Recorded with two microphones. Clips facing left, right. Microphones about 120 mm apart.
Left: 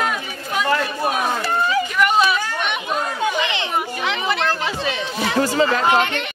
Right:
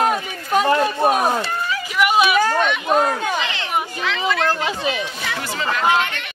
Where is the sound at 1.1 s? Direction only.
40° right (ahead or behind).